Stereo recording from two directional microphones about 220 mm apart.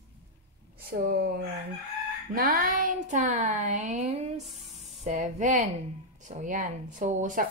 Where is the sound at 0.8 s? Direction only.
45° right (ahead or behind).